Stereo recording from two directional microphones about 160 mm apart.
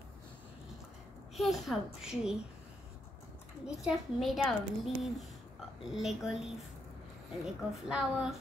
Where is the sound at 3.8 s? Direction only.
Centre (ahead or behind).